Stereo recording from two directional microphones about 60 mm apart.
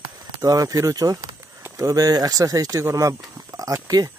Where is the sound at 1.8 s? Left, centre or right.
Right.